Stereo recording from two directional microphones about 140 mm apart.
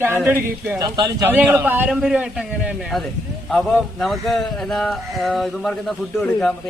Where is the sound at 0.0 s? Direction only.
15° right (ahead or behind); by 6.5 s 5° left (ahead or behind).